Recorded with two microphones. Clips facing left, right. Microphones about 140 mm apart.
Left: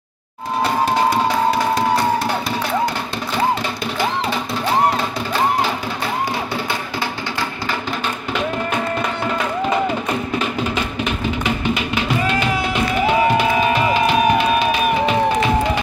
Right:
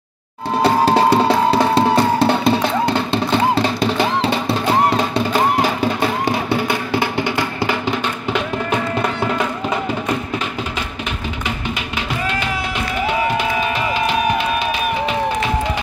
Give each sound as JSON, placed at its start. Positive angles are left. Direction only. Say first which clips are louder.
{"t": 0.6, "sound": "music", "louder": "right 4 dB", "side_deg": -30}